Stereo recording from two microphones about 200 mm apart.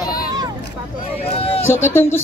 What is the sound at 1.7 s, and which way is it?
Speech, 10° left (ahead or behind).